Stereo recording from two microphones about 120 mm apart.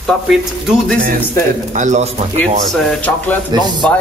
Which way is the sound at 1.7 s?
90° right.